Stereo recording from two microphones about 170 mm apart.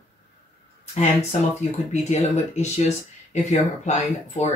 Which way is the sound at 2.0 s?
40° left (ahead or behind).